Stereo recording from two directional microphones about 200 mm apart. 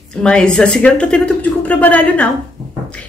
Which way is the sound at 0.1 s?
5° left (ahead or behind).